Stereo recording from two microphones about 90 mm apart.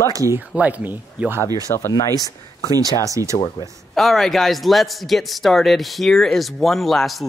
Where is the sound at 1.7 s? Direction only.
80° left.